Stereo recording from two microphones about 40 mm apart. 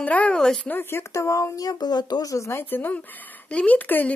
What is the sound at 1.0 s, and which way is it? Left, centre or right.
Speech, left.